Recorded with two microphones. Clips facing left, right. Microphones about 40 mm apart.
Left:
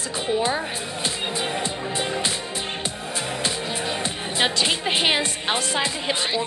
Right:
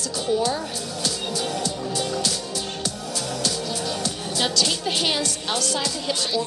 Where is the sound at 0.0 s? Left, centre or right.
Left.